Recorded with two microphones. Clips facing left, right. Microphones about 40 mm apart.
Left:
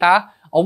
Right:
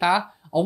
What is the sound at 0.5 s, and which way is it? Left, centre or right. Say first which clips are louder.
Speech: left 6 dB; left.